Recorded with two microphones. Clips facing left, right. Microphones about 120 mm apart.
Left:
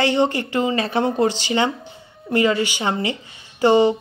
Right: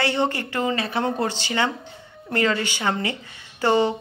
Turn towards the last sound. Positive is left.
turn(degrees=15)  # may be behind; listen again after turning